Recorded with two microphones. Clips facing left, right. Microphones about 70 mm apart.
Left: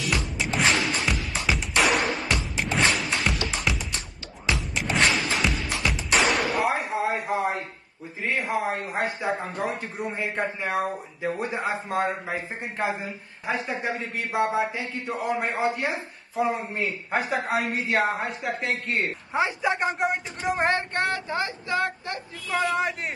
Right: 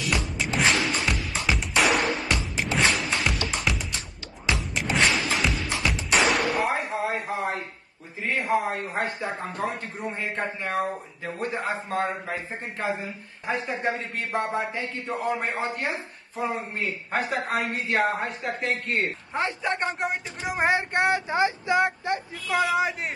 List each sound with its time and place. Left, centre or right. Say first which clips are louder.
0.1 s music: right 1 dB; centre
8.2 s a man's voice: right 1 dB; centre
13.5 s a woman's voice: right 1 dB; centre
20.9 s speech: right 3 dB; centre
22.6 s a woman's voice: right 1 dB; centre